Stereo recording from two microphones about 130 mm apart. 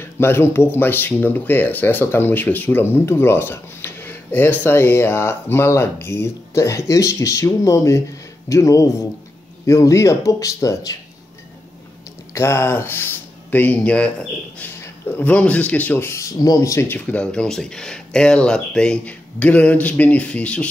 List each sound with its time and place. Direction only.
0.0 s speech: 20° left (ahead or behind)
12.4 s speech: 20° left (ahead or behind)